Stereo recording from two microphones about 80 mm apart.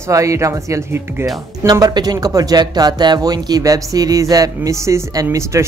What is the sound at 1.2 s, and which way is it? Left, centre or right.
Speech, right.